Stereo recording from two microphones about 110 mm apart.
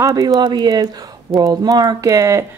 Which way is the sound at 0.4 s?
40° right (ahead or behind).